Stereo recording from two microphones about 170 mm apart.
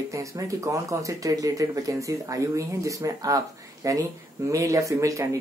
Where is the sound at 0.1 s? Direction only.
20° right (ahead or behind).